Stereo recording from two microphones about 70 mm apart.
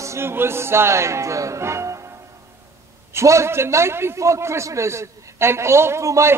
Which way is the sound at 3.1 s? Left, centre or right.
Right.